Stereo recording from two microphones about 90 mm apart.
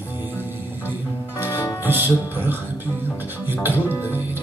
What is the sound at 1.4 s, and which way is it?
Music, 30° left (ahead or behind).